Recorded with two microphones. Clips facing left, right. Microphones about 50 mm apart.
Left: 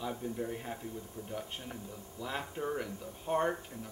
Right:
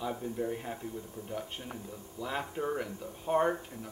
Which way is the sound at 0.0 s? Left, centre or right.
Centre.